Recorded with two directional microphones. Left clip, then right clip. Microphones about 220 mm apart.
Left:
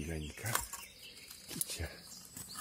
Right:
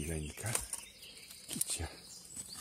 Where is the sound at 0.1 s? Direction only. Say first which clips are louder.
Right 1 dB; 15° right (ahead or behind).